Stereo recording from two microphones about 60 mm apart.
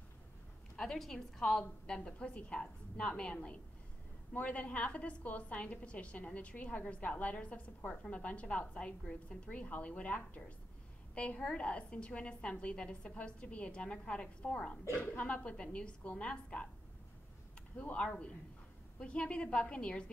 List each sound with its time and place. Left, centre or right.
0.7 s a woman's voice: centre
2.0 s a woman's voice: centre
17.7 s a woman's voice: left